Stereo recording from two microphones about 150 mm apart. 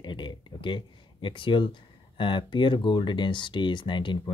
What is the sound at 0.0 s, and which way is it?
Speech, 30° left (ahead or behind).